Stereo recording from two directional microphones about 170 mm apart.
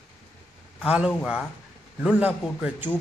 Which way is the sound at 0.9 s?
5° right (ahead or behind).